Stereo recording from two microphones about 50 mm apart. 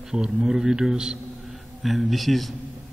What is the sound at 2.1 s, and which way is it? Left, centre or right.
Speech, centre.